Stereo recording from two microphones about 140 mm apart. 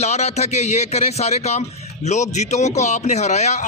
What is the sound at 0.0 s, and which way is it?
A man's voice, 50° left (ahead or behind).